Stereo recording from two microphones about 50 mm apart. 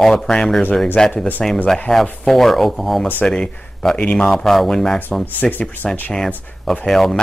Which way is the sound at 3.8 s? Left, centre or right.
Centre.